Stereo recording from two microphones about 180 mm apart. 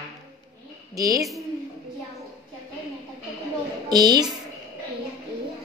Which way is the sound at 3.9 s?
20° right (ahead or behind).